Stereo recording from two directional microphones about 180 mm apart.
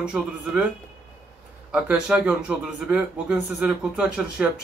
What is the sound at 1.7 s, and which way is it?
Speech, 5° right (ahead or behind).